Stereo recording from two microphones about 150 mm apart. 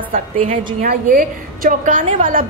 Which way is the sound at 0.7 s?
65° right (ahead or behind).